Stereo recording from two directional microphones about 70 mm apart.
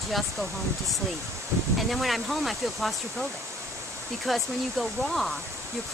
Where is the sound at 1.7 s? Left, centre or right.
Centre.